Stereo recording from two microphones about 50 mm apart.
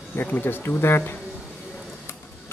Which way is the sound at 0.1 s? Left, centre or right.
Left.